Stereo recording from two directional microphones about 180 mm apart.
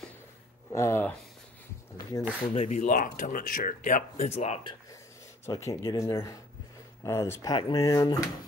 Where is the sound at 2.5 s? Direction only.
40° left (ahead or behind).